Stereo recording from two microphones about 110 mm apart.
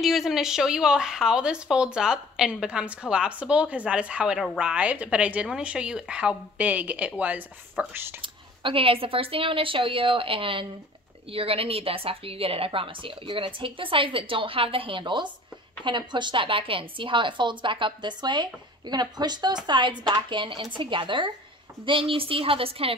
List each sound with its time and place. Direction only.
0.0 s speech: centre (ahead or behind); by 8.1 s 20° right (ahead or behind)
8.2 s a woman's voice: 55° right (ahead or behind)